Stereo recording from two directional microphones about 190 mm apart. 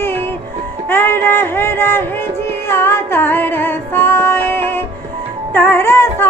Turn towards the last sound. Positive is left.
turn(degrees=10)  # may be behind; listen again after turning